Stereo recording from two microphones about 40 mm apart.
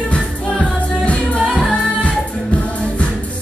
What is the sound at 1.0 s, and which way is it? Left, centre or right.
Music, left.